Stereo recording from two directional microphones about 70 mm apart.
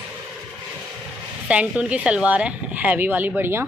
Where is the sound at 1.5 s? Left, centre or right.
Centre.